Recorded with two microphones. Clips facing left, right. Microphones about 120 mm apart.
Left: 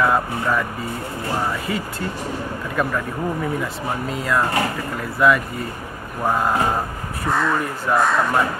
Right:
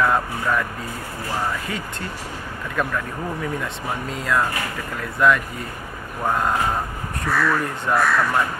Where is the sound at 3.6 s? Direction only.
Centre (ahead or behind).